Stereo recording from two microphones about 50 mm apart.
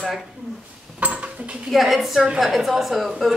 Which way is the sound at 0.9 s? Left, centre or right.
Right.